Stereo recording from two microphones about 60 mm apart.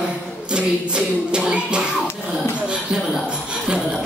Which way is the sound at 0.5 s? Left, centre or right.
Centre.